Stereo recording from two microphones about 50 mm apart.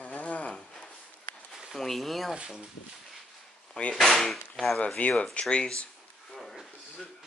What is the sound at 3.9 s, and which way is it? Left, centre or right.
Speech, centre.